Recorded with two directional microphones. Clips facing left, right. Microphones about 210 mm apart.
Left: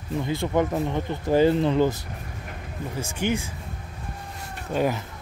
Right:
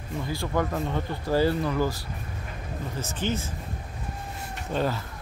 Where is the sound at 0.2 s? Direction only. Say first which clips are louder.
Left 4 dB; 20° left (ahead or behind).